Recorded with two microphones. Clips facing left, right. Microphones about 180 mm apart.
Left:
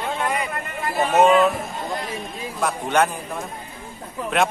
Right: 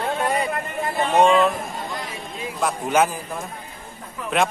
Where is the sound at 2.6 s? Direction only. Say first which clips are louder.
Even; 5° right (ahead or behind).